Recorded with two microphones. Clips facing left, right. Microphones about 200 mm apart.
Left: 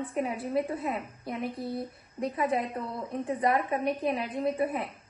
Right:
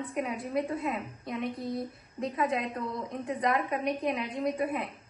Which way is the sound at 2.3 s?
30° left (ahead or behind).